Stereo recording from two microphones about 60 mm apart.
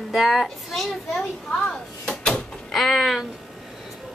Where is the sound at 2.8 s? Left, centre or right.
Centre.